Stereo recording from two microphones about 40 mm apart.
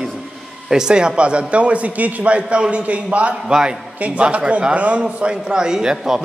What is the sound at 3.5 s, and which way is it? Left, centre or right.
Speech, centre.